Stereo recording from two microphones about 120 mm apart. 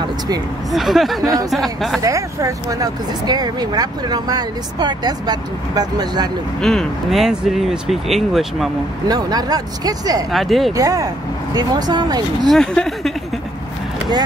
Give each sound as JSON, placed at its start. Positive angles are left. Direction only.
{"t": 0.7, "sound": "speech", "side_deg": 0}
{"t": 1.2, "sound": "speech", "side_deg": -30}
{"t": 1.5, "sound": "speech", "side_deg": 0}
{"t": 2.0, "sound": "speech", "side_deg": -30}
{"t": 6.6, "sound": "speech", "side_deg": 5}
{"t": 9.0, "sound": "speech", "side_deg": -35}
{"t": 10.3, "sound": "speech", "side_deg": 0}
{"t": 10.8, "sound": "speech", "side_deg": -30}
{"t": 12.4, "sound": "speech", "side_deg": 5}